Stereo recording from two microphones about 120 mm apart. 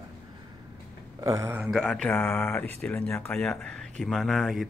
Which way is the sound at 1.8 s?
5° left (ahead or behind).